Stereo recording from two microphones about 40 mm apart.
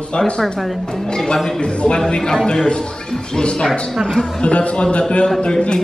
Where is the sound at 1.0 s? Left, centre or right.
Centre.